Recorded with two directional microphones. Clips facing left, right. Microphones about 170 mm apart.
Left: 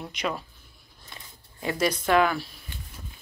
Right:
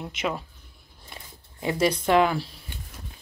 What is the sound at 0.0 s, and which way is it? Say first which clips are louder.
Speech: right 1 dB; 20° right (ahead or behind).